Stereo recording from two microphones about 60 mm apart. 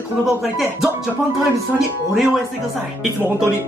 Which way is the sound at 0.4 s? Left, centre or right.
Centre.